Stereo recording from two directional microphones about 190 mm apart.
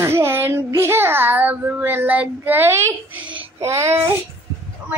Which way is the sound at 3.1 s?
10° right (ahead or behind).